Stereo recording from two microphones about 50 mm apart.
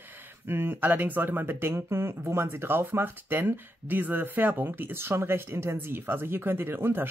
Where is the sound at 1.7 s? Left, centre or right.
Right.